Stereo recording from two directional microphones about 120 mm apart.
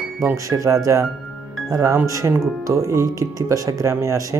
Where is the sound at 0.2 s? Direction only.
25° right (ahead or behind).